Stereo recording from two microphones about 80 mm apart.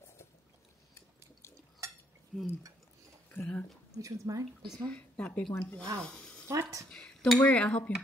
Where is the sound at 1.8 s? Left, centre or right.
Right.